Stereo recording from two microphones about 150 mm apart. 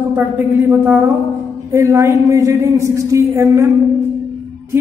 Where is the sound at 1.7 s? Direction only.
15° right (ahead or behind).